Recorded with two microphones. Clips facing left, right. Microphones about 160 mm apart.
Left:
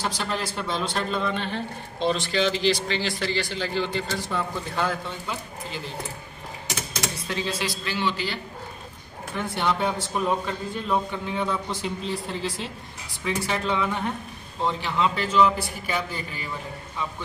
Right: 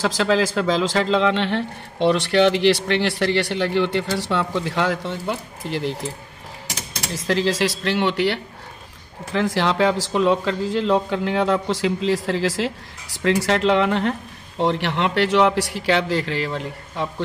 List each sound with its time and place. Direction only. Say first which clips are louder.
0.0 s speech: right 10 dB; 90° right
7.2 s a man's voice: right 12 dB; 90° right; by 8.4 s 70° right (ahead or behind)
9.3 s a man's voice: right 6 dB; 90° right